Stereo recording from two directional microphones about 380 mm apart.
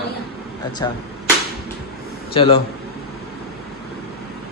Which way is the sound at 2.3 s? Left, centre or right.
Centre.